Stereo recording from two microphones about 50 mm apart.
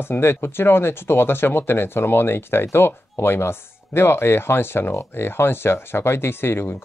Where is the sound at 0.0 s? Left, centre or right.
Left.